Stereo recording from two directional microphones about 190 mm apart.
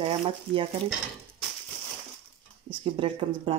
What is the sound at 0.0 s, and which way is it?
Speech, 25° right (ahead or behind).